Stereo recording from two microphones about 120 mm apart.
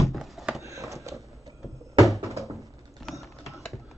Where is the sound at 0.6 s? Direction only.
25° right (ahead or behind).